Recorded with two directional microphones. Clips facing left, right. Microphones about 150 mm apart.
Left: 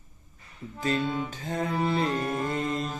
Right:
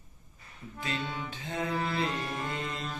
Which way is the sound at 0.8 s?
40° left (ahead or behind).